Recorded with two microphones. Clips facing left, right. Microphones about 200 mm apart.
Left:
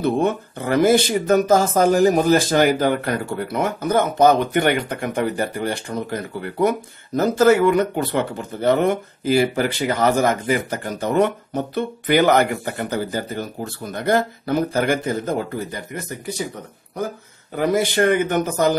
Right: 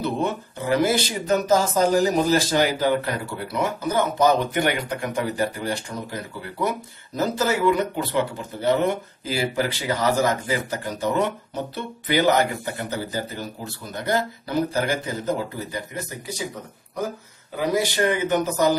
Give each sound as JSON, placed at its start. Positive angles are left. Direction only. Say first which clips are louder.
{"t": 0.0, "sound": "speech", "louder": "left 5 dB", "side_deg": 55}
{"t": 17.6, "sound": "speech", "louder": "left 4 dB", "side_deg": 55}